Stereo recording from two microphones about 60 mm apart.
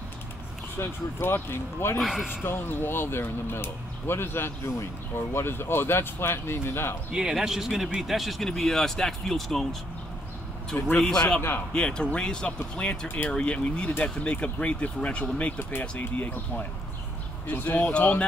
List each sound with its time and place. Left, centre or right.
0.7 s speech: left
2.0 s a man's voice: centre
2.4 s speech: left
7.1 s speech: centre
11.0 s speech: centre
16.0 s speech: left
17.5 s speech: left